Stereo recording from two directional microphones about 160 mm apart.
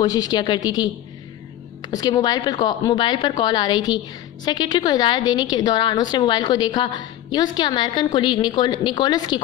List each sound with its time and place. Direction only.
0.0 s a woman's voice: 25° left (ahead or behind)
1.9 s a woman's voice: 25° left (ahead or behind)